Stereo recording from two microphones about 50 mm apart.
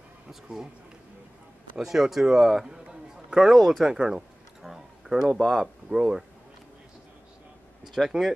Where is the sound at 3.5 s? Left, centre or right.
Centre.